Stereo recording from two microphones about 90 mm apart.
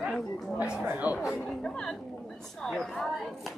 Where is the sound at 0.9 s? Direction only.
15° right (ahead or behind).